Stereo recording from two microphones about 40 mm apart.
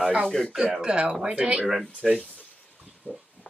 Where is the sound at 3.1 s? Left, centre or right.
Left.